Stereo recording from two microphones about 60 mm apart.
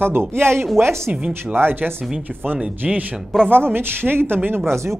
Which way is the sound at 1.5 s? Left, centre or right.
Right.